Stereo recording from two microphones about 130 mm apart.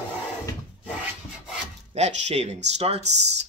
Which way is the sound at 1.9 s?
60° right (ahead or behind).